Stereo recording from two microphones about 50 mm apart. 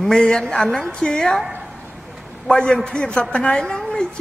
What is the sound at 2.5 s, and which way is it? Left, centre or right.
A woman's voice, centre.